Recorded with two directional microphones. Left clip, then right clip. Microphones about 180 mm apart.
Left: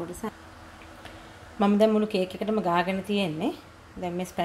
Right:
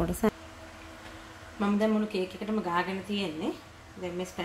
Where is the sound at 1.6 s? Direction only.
65° left (ahead or behind).